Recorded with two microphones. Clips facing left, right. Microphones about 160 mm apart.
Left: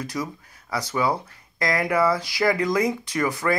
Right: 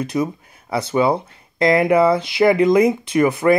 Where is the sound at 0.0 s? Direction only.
25° right (ahead or behind).